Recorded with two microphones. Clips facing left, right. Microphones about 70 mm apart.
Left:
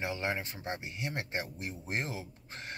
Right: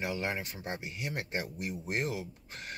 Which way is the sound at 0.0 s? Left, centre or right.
Left.